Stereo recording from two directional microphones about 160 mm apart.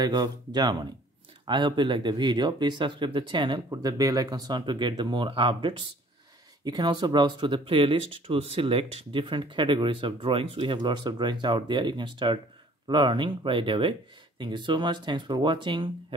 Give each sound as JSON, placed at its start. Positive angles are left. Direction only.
{"t": 0.0, "sound": "speech", "side_deg": -25}